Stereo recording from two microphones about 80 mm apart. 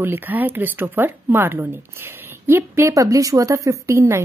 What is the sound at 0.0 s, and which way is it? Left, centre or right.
Speech, right.